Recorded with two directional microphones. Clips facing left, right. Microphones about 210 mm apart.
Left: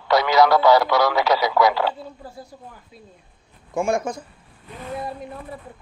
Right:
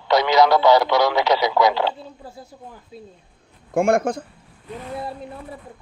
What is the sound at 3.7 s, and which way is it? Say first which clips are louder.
Speech: right 4 dB; 60° right (ahead or behind).